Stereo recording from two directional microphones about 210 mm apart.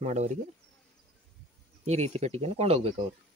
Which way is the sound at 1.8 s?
30° right (ahead or behind).